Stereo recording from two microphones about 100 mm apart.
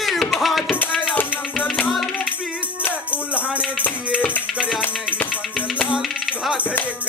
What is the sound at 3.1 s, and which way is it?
Music, 15° right (ahead or behind).